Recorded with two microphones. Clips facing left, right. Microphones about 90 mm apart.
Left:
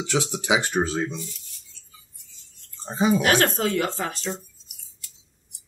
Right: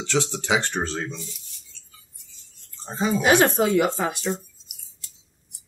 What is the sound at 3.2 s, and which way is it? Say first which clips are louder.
Speech: right 3 dB; 15° right (ahead or behind).